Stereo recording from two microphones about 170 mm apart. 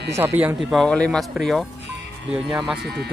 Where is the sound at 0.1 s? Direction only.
15° right (ahead or behind).